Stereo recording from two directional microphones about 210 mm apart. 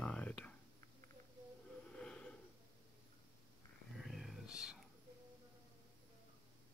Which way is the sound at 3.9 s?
Centre (ahead or behind).